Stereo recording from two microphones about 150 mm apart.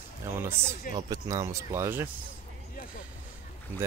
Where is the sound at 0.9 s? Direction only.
25° right (ahead or behind).